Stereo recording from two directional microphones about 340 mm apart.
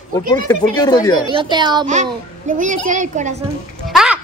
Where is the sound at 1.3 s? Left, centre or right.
Centre.